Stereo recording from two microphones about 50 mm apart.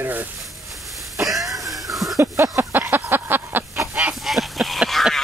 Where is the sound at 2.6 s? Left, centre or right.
Right.